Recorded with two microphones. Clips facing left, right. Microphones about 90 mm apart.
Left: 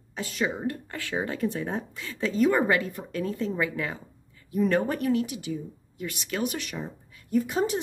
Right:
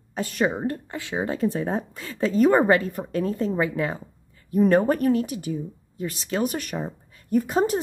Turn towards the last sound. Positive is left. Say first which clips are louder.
# right 4 dB
turn(degrees=-40)  # may be behind; listen again after turning